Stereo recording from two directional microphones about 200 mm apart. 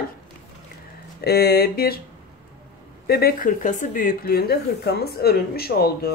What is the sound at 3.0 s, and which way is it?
A woman's voice, 50° left (ahead or behind).